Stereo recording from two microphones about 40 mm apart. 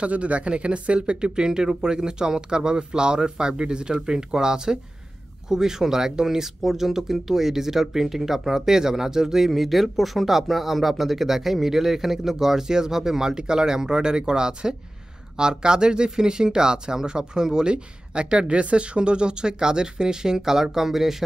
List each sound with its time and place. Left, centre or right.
0.0 s speech: right; by 21.2 s centre